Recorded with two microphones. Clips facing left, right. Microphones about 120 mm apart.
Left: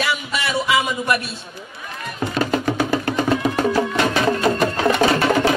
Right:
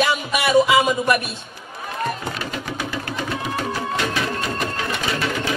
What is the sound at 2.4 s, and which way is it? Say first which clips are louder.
Music: left 8 dB; 45° left (ahead or behind).